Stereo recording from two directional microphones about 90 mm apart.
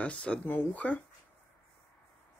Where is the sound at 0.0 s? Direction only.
15° left (ahead or behind).